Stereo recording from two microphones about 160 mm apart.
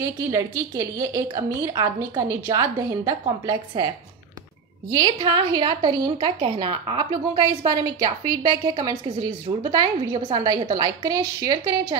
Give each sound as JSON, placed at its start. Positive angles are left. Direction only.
{"t": 0.0, "sound": "a woman's voice", "side_deg": -20}
{"t": 4.9, "sound": "a woman's voice", "side_deg": -30}